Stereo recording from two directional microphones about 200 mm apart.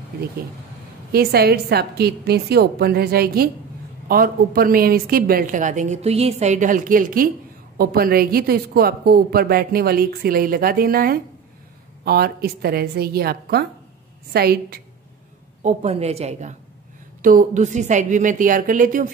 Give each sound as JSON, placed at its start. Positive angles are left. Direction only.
{"t": 1.1, "sound": "a woman's voice", "side_deg": -50}
{"t": 15.6, "sound": "a woman's voice", "side_deg": -30}